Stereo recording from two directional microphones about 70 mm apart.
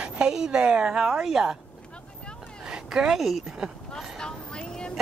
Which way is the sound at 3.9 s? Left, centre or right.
Centre.